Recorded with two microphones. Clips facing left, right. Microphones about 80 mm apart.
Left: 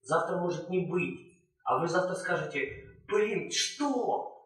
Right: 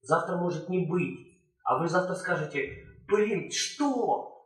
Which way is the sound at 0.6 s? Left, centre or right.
Centre.